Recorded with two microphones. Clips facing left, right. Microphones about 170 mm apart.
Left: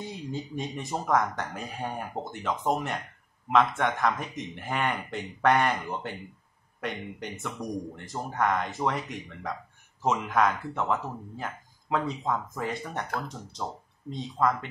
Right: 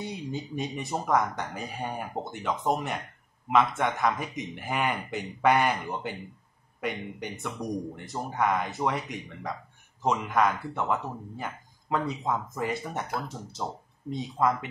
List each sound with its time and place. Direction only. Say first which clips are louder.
0.0 s speech: right 1 dB; centre (ahead or behind)